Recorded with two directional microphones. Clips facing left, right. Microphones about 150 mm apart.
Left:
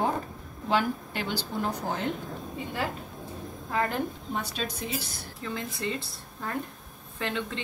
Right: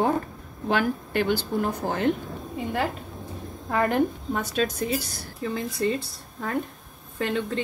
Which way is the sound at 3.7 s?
60° right (ahead or behind).